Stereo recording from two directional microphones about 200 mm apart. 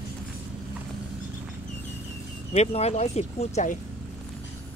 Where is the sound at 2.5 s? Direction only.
30° left (ahead or behind).